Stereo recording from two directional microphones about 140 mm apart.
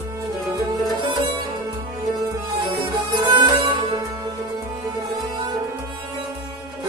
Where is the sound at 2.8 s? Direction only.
35° right (ahead or behind).